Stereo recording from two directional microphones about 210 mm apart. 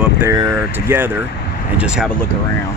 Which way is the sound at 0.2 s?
15° right (ahead or behind).